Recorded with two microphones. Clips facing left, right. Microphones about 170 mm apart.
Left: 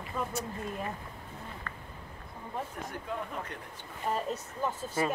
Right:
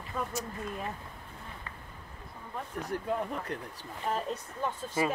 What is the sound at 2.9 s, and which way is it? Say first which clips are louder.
Speech: right 5 dB; 35° right (ahead or behind).